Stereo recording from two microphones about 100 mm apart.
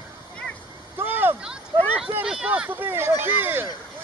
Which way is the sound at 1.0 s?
20° right (ahead or behind).